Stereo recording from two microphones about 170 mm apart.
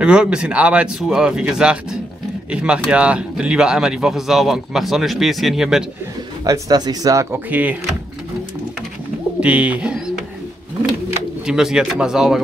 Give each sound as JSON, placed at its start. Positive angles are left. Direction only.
{"t": 0.0, "sound": "speech", "side_deg": -5}
{"t": 6.4, "sound": "speech", "side_deg": -20}
{"t": 9.4, "sound": "speech", "side_deg": -10}
{"t": 11.4, "sound": "speech", "side_deg": -5}